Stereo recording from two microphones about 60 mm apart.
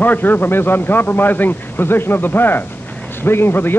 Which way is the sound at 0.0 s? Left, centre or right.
Left.